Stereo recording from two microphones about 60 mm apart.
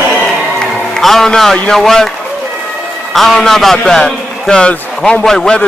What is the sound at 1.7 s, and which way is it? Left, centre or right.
Speech, centre.